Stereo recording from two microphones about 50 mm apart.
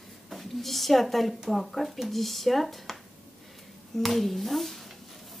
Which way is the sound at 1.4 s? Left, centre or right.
Centre.